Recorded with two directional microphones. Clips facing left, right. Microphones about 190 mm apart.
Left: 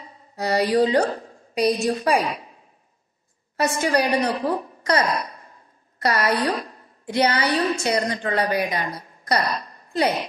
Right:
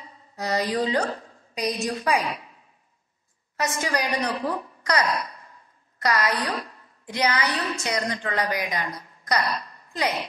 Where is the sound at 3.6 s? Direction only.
30° left (ahead or behind).